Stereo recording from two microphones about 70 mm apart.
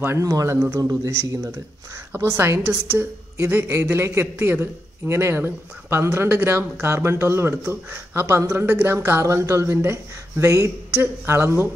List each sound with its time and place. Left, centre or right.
0.2 s speech: right
0.7 s a man's voice: right
3.0 s a man's voice: right